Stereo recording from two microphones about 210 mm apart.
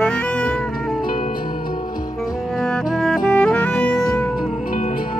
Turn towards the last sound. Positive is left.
turn(degrees=40)  # may be behind; listen again after turning